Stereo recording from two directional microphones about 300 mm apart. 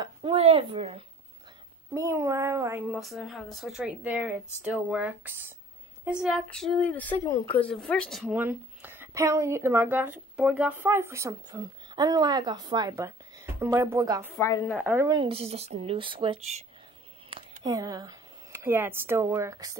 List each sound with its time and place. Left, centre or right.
0.0 s a woman's voice: centre
14.3 s speech: centre
14.7 s a woman's voice: centre